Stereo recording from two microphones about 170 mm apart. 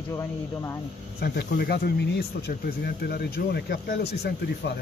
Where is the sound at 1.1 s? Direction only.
70° left (ahead or behind).